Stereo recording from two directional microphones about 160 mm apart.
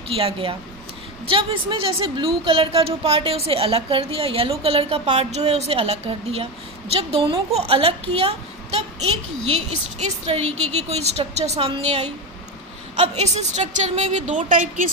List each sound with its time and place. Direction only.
0.1 s a woman's voice: 35° right (ahead or behind); by 14.9 s 55° right (ahead or behind)